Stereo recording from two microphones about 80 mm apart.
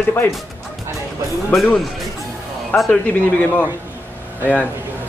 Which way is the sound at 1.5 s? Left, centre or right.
Centre.